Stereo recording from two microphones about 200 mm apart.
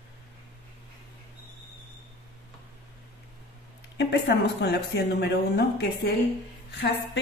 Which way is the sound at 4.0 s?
60° left (ahead or behind).